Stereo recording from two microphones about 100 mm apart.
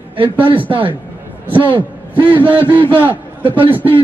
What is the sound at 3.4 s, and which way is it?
Speech, 60° right (ahead or behind).